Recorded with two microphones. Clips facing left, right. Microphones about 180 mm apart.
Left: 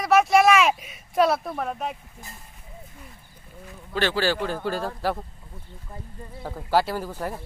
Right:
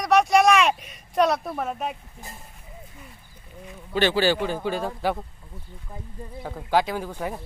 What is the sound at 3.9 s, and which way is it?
Speech, centre (ahead or behind).